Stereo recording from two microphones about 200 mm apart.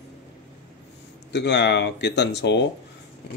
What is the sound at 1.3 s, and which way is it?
Speech, 60° left (ahead or behind).